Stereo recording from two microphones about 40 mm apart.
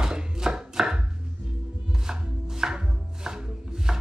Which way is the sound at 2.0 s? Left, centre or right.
Centre.